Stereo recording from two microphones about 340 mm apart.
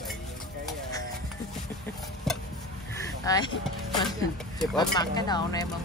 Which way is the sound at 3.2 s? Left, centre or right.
Centre.